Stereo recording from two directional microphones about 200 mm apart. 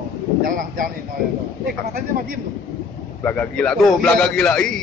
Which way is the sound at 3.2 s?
5° left (ahead or behind).